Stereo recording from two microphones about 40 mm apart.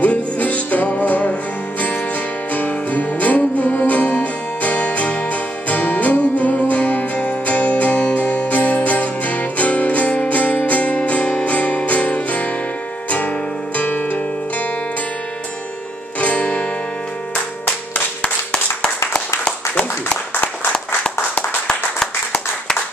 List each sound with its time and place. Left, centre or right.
0.0 s music: left
2.5 s music: left
13.7 s music: left
16.2 s music: left
18.5 s clapping: left